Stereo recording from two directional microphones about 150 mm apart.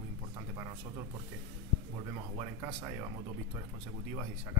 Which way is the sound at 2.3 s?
20° right (ahead or behind).